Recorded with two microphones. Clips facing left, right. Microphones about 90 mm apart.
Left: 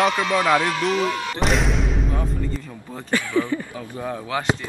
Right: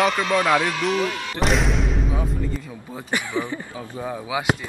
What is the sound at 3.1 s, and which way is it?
Speech, 20° right (ahead or behind).